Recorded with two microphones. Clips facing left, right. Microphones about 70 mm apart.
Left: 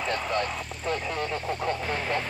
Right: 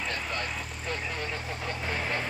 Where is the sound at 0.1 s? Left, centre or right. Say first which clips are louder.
Left 6 dB; left.